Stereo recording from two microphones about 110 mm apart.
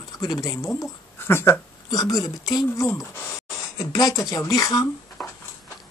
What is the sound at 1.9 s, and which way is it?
Speech, 35° left (ahead or behind).